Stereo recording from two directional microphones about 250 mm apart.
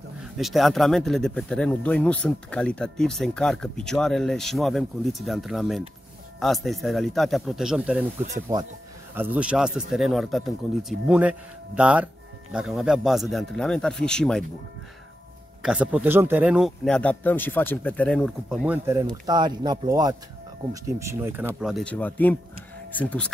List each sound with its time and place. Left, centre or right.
0.4 s speech: centre
8.5 s speech: centre
15.6 s speech: centre